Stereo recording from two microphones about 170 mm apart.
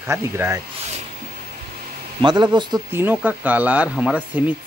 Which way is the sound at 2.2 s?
25° right (ahead or behind).